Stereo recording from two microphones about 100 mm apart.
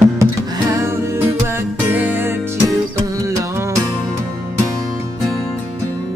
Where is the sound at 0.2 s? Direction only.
30° right (ahead or behind).